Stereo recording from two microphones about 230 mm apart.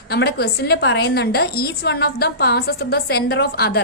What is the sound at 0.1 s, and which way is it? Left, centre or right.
A woman's voice, left.